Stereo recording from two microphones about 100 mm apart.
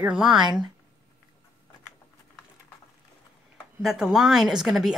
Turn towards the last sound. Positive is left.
turn(degrees=-5)  # may be behind; listen again after turning